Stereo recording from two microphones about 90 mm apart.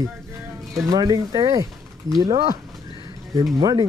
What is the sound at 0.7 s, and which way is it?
Speech, 40° right (ahead or behind).